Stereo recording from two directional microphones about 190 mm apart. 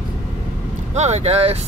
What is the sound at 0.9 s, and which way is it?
Speech, 35° right (ahead or behind).